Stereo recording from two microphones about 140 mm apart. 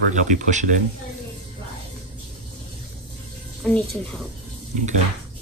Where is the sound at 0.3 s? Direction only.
60° right (ahead or behind).